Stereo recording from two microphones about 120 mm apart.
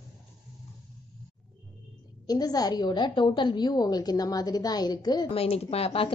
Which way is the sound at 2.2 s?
35° left (ahead or behind).